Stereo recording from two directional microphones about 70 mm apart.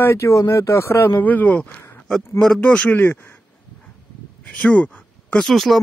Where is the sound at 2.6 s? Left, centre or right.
Centre.